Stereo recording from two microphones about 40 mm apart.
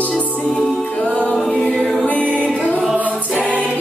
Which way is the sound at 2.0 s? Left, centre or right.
Left.